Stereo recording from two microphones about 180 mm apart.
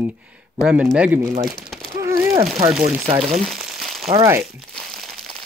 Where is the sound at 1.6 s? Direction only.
Centre (ahead or behind).